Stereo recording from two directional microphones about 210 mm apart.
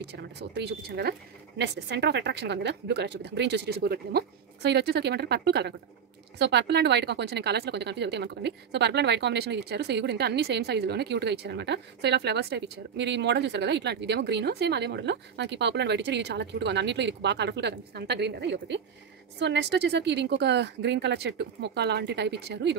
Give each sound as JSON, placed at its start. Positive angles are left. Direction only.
{"t": 0.0, "sound": "a woman's voice", "side_deg": -55}